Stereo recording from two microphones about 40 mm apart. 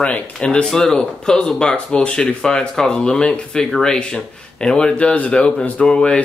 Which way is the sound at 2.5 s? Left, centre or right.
Left.